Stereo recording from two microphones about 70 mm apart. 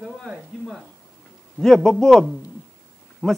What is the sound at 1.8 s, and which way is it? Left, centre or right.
Speech, centre.